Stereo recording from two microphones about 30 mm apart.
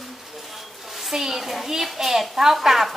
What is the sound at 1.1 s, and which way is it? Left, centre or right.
A child's voice, centre.